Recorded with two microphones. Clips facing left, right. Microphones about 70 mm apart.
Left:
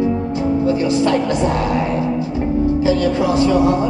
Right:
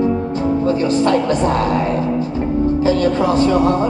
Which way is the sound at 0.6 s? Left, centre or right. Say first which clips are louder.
Right 1 dB; right.